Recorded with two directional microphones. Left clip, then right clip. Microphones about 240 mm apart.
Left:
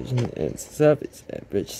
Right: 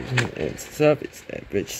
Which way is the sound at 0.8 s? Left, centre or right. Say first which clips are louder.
Even; centre.